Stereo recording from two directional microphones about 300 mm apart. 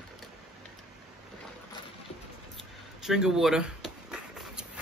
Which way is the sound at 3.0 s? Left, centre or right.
Centre.